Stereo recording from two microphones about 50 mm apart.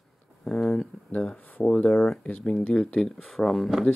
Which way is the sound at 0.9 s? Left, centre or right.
Centre.